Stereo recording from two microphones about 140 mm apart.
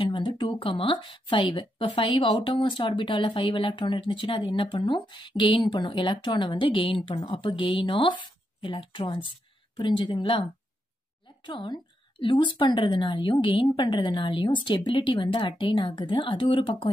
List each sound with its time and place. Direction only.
0.0 s speech: 35° left (ahead or behind)